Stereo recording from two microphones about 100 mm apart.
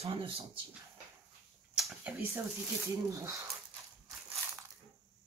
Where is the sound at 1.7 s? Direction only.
Centre (ahead or behind).